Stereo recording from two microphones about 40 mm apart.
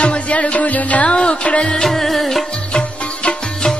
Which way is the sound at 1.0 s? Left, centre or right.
Left.